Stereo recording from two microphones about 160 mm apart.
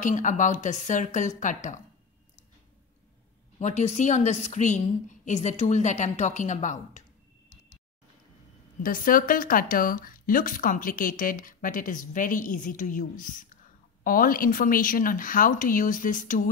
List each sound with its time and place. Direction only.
0.0 s a woman's voice: 50° left (ahead or behind)
3.5 s a woman's voice: 45° left (ahead or behind)
8.8 s speech: 60° left (ahead or behind)